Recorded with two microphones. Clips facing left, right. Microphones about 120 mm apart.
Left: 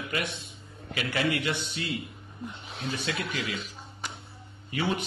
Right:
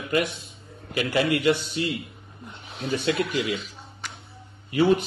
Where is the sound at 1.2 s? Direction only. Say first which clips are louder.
Right 7 dB; 5° right (ahead or behind).